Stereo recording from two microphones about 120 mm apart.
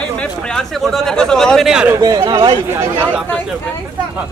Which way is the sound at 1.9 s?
35° right (ahead or behind).